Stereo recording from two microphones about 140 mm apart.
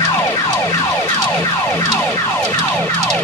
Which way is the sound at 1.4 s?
25° left (ahead or behind).